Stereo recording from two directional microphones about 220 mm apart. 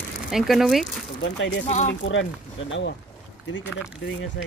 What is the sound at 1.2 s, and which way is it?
Speech, 55° left (ahead or behind).